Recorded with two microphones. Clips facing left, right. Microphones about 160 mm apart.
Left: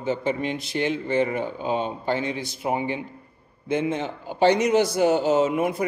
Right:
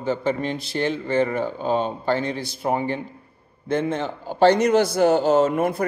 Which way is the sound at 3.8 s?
40° right (ahead or behind).